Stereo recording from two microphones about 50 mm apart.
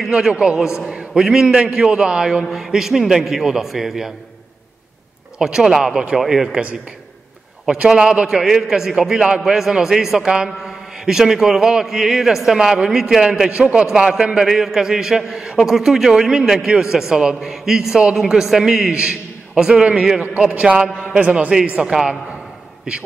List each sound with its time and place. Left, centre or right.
0.1 s a man's voice: centre
2.4 s a man's voice: centre
5.4 s a man's voice: centre
7.6 s a man's voice: centre
18.9 s a man's voice: right
20.2 s a man's voice: right
21.7 s a man's voice: centre